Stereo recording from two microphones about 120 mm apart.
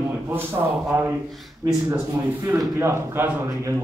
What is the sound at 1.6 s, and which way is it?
A man's voice, 30° right (ahead or behind).